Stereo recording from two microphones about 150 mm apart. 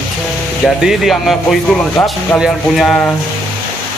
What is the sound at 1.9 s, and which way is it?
Speech, 20° left (ahead or behind).